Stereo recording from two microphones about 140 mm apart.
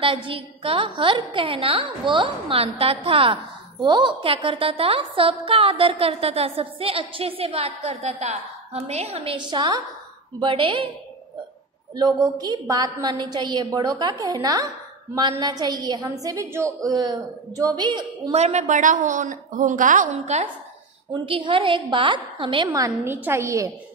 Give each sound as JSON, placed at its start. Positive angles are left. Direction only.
{"t": 0.0, "sound": "a woman's voice", "side_deg": -40}
{"t": 9.5, "sound": "a woman's voice", "side_deg": -30}
{"t": 11.9, "sound": "a woman's voice", "side_deg": -30}
{"t": 18.3, "sound": "a woman's voice", "side_deg": -55}
{"t": 21.1, "sound": "a woman's voice", "side_deg": -40}
{"t": 22.7, "sound": "a woman's voice", "side_deg": -20}